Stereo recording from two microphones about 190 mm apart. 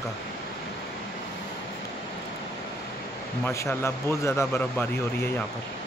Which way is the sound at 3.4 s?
15° left (ahead or behind).